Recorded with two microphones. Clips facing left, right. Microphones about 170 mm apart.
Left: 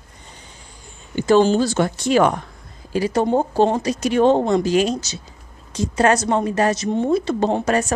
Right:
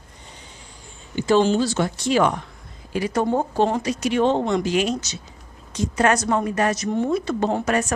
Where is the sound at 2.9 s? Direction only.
30° left (ahead or behind).